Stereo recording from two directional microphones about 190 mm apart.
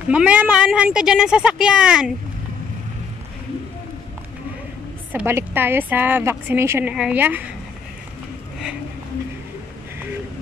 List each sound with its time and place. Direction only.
0.1 s speech: 5° right (ahead or behind)
5.1 s a woman's voice: 10° right (ahead or behind)